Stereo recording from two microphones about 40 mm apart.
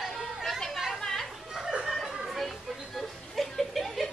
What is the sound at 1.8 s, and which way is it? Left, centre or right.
Chatter, centre.